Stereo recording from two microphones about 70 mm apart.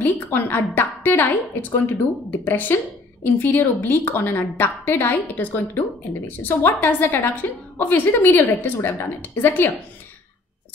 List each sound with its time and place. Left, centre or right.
0.0 s a woman's voice: left